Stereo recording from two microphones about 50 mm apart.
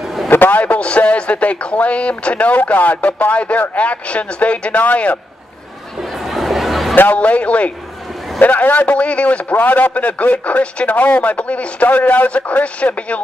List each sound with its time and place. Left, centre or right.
0.3 s a man's voice: left
6.2 s a sound: centre
7.2 s a man's voice: left
9.6 s a man's voice: left